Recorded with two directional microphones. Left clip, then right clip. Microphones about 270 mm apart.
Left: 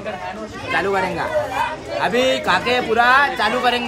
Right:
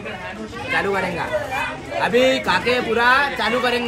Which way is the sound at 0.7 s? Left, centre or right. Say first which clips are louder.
Left 2 dB; left.